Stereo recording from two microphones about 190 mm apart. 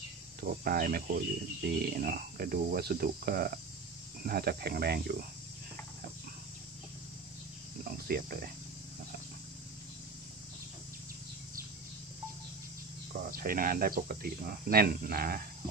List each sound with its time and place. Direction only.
0.4 s speech: 50° right (ahead or behind)
8.1 s speech: 55° right (ahead or behind)
13.1 s speech: 50° right (ahead or behind)